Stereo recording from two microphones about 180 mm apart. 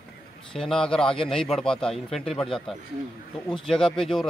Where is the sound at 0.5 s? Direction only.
5° left (ahead or behind).